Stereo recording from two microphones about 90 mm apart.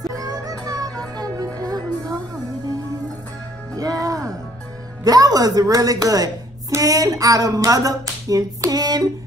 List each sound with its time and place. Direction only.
0.0 s music: 45° right (ahead or behind)
3.7 s music: 40° right (ahead or behind)
5.0 s a woman's voice: 45° right (ahead or behind)